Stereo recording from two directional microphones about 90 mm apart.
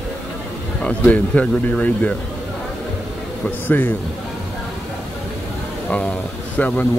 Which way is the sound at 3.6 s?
20° left (ahead or behind).